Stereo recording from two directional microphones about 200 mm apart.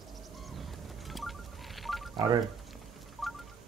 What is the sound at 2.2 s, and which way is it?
Speech, 25° right (ahead or behind).